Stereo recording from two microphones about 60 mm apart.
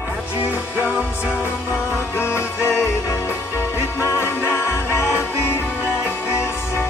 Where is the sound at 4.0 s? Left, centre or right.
Left.